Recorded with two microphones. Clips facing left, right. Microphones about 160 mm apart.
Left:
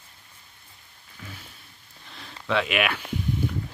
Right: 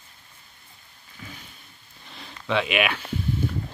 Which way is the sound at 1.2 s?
Centre (ahead or behind).